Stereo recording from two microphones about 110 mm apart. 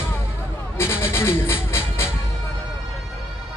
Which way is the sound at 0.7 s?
20° left (ahead or behind).